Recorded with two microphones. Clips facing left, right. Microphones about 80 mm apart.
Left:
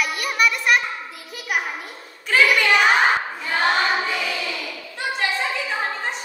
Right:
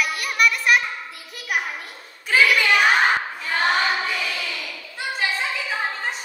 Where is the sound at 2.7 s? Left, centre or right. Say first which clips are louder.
Left 1 dB; centre.